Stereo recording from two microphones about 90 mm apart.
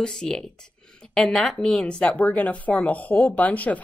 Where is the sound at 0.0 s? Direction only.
10° left (ahead or behind).